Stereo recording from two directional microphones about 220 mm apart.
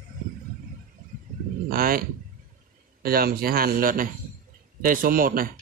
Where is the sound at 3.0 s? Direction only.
45° right (ahead or behind).